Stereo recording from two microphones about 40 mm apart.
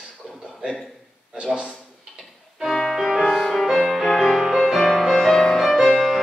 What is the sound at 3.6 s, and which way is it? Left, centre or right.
Music, centre.